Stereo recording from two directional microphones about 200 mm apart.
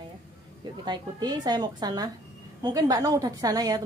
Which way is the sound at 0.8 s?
20° right (ahead or behind).